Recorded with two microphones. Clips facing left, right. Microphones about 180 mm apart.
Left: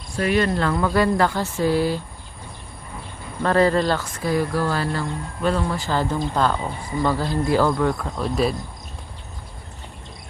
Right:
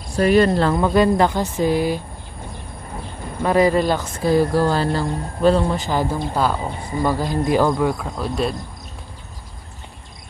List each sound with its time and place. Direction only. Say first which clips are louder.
0.1 s speech: right 6 dB; 40° right (ahead or behind)
0.7 s speech: right 2 dB; 20° right (ahead or behind)
3.4 s speech: right 2 dB; 15° right (ahead or behind)
4.2 s speech: right 8 dB; 30° right (ahead or behind); by 8.5 s centre (ahead or behind)